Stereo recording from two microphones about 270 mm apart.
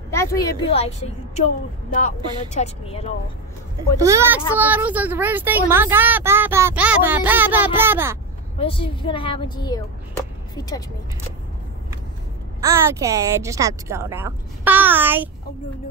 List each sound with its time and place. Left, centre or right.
0.1 s a woman's voice: centre
4.0 s a woman's voice: centre
8.5 s speech: centre
12.5 s a woman's voice: centre